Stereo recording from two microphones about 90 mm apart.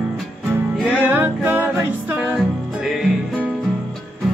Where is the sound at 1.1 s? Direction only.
20° right (ahead or behind).